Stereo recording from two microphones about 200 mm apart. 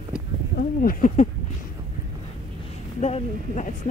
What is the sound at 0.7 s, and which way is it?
Speech, 45° left (ahead or behind).